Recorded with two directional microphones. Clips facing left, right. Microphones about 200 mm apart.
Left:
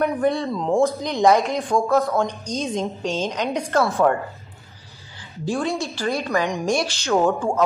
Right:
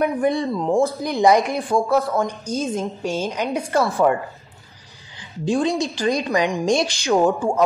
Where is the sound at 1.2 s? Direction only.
10° right (ahead or behind).